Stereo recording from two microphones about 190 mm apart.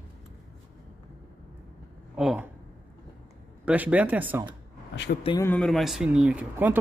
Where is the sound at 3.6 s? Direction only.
10° right (ahead or behind).